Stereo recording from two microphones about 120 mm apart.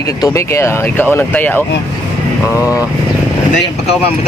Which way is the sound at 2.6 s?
10° right (ahead or behind).